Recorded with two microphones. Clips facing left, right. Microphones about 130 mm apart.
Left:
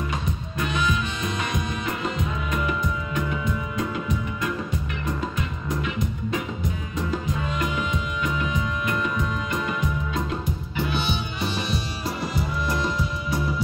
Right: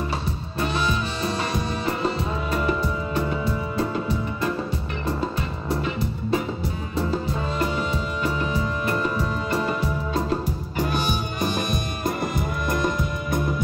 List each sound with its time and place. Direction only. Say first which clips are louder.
0.6 s music: right 1 dB; 35° right (ahead or behind); by 13.6 s 50° right (ahead or behind)